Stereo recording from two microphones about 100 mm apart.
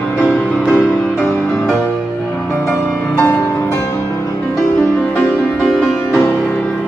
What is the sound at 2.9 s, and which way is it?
Music, 15° left (ahead or behind).